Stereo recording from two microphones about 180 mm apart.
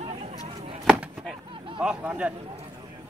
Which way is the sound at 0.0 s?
35° right (ahead or behind).